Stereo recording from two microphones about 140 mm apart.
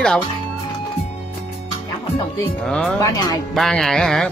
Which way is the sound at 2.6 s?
5° left (ahead or behind).